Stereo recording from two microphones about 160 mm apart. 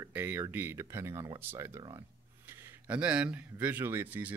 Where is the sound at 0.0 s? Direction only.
15° right (ahead or behind).